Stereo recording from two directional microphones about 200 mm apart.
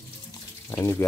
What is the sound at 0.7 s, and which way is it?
Speech, 15° left (ahead or behind).